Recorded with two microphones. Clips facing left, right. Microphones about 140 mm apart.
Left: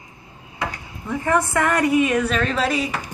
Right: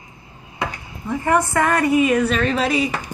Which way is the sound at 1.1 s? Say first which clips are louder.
Right 2 dB; 10° right (ahead or behind).